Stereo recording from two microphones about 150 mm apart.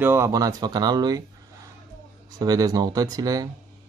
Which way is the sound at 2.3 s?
25° right (ahead or behind).